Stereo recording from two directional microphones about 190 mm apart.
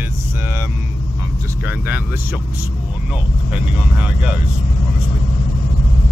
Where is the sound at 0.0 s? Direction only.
10° right (ahead or behind).